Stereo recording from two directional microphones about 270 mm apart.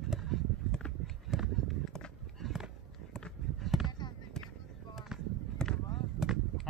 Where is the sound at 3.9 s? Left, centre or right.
Centre.